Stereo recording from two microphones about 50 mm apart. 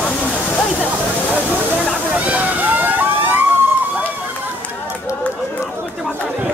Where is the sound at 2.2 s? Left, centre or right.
Right.